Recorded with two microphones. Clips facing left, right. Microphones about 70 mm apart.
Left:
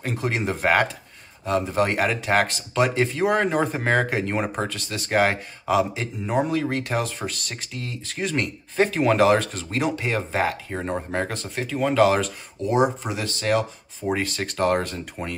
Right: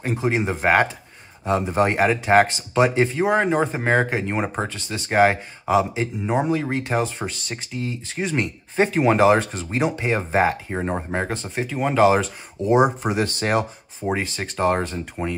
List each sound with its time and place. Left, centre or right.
0.0 s speech: centre
13.0 s speech: right
14.0 s speech: centre